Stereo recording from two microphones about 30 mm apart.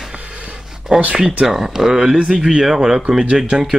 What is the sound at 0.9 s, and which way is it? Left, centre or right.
Speech, right.